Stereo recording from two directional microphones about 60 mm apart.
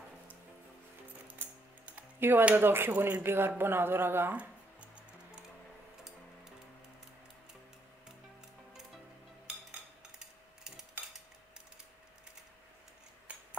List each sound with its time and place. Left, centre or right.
2.1 s a man's voice: right
4.3 s music: right
10.1 s a sound: centre